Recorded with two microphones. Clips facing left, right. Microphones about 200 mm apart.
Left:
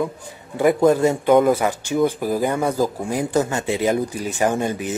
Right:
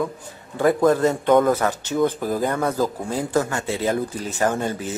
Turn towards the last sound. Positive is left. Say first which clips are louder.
# left 2 dB
turn(degrees=15)  # may be behind; listen again after turning